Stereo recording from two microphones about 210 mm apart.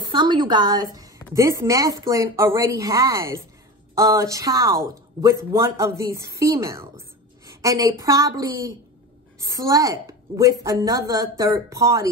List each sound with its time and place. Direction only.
0.0 s a woman's voice: 20° right (ahead or behind)
0.9 s a sound: 15° right (ahead or behind)
1.3 s a woman's voice: 15° right (ahead or behind)